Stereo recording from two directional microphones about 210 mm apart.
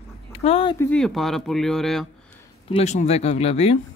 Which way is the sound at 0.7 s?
5° left (ahead or behind).